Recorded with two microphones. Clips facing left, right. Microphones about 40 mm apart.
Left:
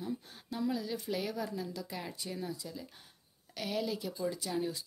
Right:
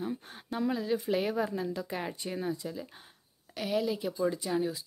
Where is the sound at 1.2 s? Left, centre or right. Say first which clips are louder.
Right 6 dB; right.